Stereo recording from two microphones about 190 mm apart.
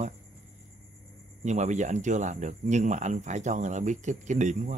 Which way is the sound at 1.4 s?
40° right (ahead or behind).